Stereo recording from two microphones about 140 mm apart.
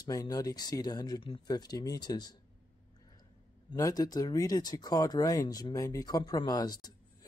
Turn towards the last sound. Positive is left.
turn(degrees=30)  # may be behind; listen again after turning